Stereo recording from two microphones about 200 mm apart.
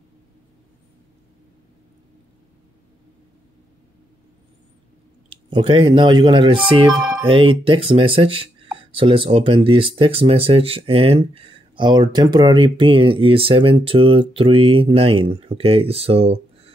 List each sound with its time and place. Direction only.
5.3 s speech: 25° right (ahead or behind)